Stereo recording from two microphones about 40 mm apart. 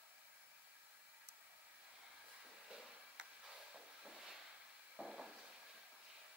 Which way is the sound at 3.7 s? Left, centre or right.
Centre.